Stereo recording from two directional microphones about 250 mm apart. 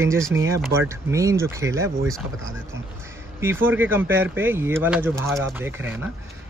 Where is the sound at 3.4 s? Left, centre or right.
Centre.